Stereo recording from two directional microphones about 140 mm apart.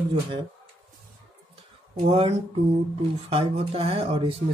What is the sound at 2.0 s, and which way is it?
Speech, 40° right (ahead or behind).